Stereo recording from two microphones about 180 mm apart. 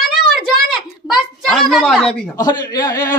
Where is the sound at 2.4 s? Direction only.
20° left (ahead or behind).